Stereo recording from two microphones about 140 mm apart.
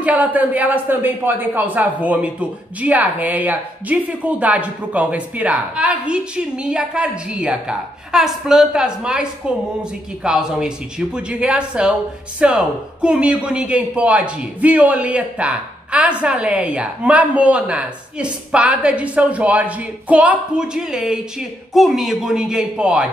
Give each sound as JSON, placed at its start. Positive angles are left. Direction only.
{"t": 0.0, "sound": "speech", "side_deg": -10}